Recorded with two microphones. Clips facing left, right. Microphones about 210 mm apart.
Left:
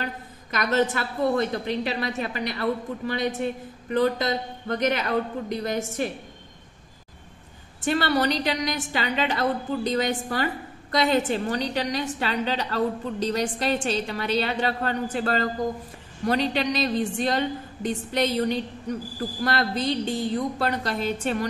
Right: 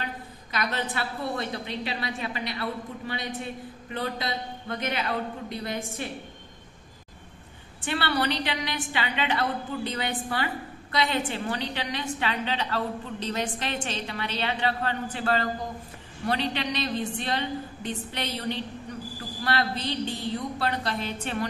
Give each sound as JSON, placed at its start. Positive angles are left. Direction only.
{"t": 0.0, "sound": "a woman's voice", "side_deg": 45}
{"t": 7.8, "sound": "a woman's voice", "side_deg": 40}